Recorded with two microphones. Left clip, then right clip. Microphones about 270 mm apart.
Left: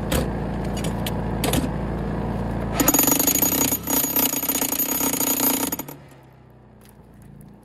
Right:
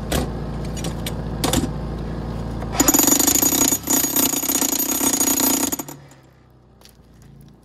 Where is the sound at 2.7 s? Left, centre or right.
Centre.